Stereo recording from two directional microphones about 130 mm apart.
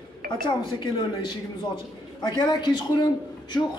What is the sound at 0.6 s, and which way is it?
Speech, 35° left (ahead or behind).